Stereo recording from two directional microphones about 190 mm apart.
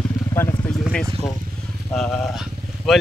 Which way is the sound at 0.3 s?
15° left (ahead or behind).